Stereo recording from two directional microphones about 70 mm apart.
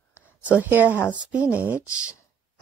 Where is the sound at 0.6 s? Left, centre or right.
Right.